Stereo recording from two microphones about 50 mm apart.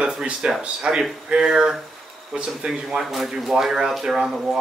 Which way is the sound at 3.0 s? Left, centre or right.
Centre.